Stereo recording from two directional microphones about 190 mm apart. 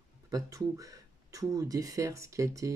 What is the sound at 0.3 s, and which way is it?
Speech, 15° right (ahead or behind).